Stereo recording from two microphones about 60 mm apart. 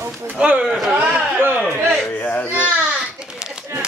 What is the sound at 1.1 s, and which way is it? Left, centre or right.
Speech, right.